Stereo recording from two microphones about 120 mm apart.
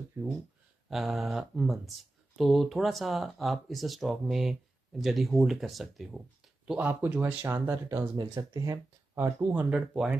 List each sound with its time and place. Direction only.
0.2 s speech: 15° right (ahead or behind)
0.8 s speech: centre (ahead or behind)
6.7 s speech: 15° right (ahead or behind)
8.2 s speech: 30° right (ahead or behind)
9.5 s speech: 10° right (ahead or behind)